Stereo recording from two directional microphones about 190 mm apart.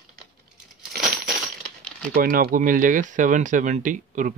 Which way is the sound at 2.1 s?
50° right (ahead or behind).